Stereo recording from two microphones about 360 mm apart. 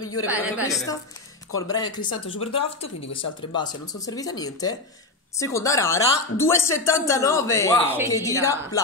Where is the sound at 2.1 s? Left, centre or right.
Left.